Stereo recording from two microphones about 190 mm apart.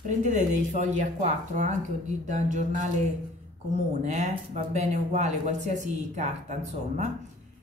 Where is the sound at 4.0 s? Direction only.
40° right (ahead or behind).